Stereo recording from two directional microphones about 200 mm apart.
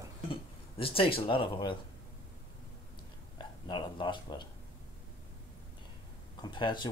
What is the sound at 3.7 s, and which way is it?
Speech, 20° left (ahead or behind).